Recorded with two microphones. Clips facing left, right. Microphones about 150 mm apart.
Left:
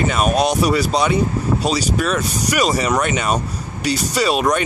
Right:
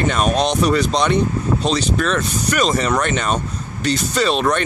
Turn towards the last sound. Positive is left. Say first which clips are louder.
# even
turn(degrees=10)  # may be behind; listen again after turning